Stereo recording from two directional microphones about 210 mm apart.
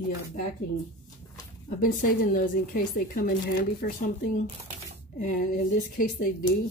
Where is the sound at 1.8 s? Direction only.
40° left (ahead or behind).